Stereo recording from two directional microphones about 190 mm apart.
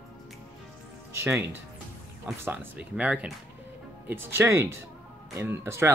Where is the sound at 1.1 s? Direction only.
15° right (ahead or behind).